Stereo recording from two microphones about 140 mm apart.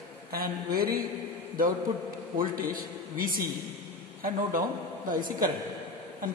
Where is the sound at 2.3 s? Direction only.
85° right.